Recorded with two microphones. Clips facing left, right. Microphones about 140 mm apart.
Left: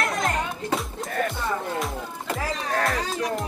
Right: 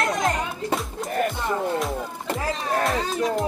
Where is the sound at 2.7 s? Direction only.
25° right (ahead or behind).